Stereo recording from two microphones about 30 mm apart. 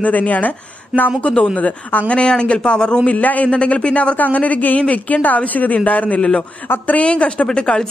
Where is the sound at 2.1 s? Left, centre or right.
Left.